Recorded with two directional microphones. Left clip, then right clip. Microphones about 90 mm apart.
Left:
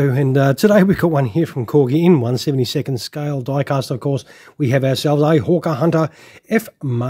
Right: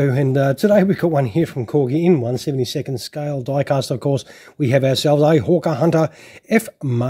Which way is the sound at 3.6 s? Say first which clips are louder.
Right 1 dB; 20° left (ahead or behind).